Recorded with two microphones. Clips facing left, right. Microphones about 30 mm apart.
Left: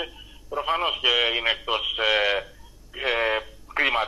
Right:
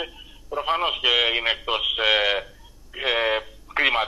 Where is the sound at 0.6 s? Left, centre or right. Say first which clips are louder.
Right 1 dB; right.